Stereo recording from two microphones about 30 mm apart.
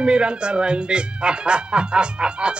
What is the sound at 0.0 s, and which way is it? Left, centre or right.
Speech, right.